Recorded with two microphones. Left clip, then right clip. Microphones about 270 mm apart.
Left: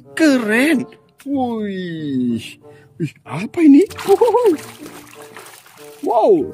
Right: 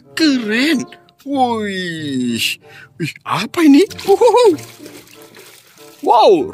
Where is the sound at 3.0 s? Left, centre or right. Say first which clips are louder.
Right 7 dB; centre.